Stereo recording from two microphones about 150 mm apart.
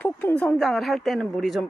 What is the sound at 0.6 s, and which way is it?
Speech, centre (ahead or behind).